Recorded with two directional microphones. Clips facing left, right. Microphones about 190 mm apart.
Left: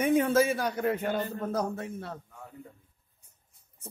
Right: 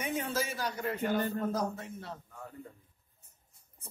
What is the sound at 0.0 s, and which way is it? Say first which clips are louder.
A man's voice: left 11 dB; 55° left (ahead or behind).